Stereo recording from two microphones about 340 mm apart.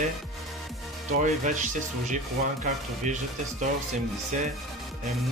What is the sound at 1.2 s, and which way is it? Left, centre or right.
Speech, right.